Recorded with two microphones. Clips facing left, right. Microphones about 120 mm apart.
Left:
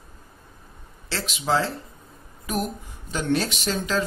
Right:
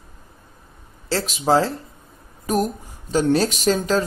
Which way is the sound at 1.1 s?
40° right (ahead or behind).